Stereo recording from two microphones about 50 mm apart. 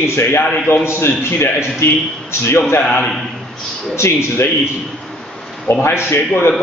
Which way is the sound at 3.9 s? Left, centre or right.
Left.